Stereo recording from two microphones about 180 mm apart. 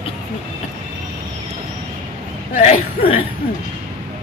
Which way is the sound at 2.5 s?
35° left (ahead or behind).